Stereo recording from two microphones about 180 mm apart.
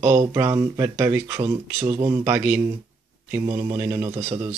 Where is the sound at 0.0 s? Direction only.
15° right (ahead or behind).